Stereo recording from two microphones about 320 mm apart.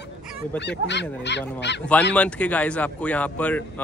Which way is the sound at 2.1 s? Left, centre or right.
Centre.